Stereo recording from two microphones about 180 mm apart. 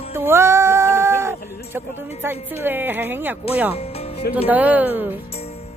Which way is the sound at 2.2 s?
10° right (ahead or behind).